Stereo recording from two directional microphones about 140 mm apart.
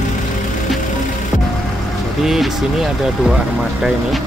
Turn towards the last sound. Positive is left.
turn(degrees=-5)  # may be behind; listen again after turning